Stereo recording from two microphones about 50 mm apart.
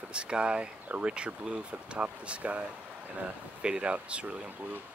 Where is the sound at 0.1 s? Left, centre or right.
Centre.